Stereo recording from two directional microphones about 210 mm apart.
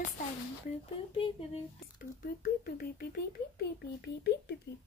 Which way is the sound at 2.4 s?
45° left (ahead or behind).